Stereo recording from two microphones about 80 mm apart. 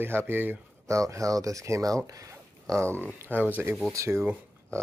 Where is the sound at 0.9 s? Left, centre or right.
Right.